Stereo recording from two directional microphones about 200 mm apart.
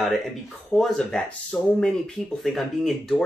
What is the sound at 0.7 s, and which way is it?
Speech, 5° left (ahead or behind).